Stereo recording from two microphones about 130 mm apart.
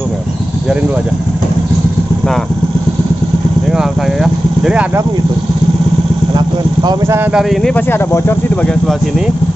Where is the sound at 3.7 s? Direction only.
5° right (ahead or behind).